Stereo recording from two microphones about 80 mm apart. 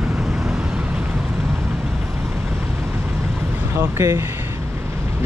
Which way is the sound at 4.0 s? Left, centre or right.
Right.